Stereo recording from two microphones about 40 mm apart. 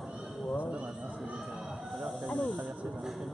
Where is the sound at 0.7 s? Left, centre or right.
Right.